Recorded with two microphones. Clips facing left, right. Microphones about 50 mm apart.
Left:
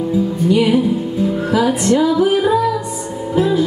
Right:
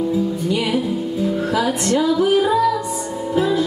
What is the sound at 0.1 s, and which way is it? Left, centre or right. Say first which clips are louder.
Music: left 4 dB; centre.